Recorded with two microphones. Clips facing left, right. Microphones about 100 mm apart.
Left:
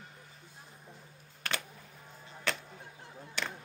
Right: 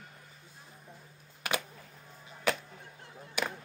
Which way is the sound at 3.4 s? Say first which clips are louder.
Right 4 dB; 10° right (ahead or behind).